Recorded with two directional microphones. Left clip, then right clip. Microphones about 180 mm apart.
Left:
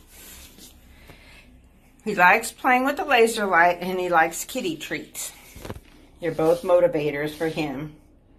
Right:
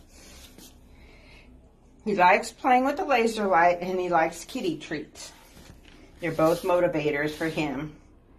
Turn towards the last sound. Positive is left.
turn(degrees=20)  # may be behind; listen again after turning